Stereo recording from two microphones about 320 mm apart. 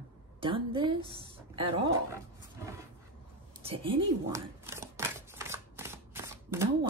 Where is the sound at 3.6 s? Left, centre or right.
Centre.